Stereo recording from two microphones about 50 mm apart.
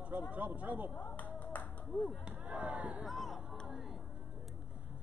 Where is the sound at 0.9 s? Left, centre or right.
Left.